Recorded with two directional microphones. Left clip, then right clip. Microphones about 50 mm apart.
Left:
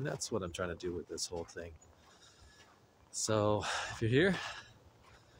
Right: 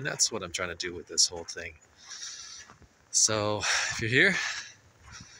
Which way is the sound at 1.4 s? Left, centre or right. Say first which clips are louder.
Right 8 dB; centre.